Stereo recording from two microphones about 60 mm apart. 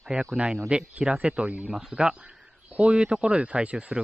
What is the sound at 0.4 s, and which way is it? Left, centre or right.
Speech, centre.